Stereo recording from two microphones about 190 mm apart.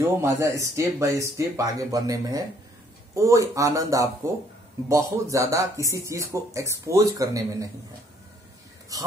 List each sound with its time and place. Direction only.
0.0 s speech: 15° right (ahead or behind)
8.9 s speech: 20° right (ahead or behind)